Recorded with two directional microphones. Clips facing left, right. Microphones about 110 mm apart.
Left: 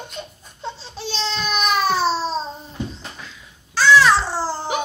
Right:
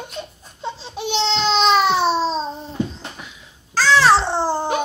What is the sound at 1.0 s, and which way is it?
Baby cry, 20° right (ahead or behind).